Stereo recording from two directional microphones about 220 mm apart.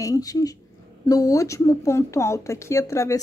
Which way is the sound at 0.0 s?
15° left (ahead or behind).